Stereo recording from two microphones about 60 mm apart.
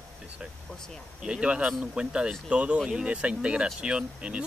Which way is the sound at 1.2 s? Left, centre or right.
Centre.